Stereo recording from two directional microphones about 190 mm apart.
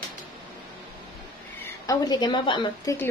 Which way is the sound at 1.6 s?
20° left (ahead or behind).